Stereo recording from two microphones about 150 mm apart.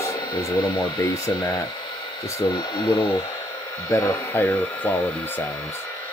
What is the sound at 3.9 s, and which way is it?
Speech, 20° left (ahead or behind).